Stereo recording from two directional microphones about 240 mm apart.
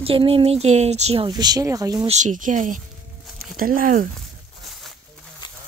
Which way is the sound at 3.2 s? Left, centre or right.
Centre.